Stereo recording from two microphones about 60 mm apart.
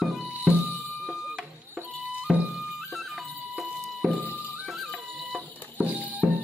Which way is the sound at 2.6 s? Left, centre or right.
Centre.